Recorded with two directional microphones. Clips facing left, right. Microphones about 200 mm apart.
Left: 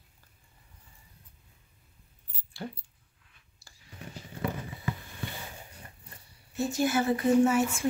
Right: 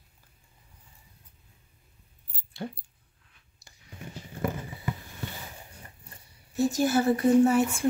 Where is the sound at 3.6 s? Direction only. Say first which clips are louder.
Right 1 dB; 20° right (ahead or behind).